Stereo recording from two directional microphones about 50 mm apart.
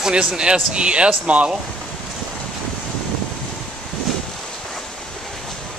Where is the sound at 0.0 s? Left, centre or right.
Centre.